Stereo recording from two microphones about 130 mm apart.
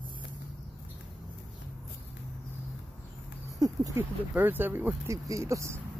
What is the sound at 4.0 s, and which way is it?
Speech, 15° right (ahead or behind).